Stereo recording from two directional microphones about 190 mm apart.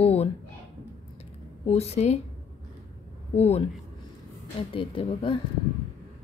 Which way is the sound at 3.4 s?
30° left (ahead or behind).